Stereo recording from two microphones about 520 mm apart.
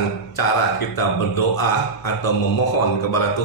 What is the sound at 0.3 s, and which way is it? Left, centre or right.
Speech, left.